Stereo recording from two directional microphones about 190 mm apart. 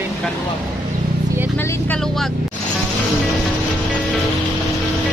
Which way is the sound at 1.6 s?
10° left (ahead or behind).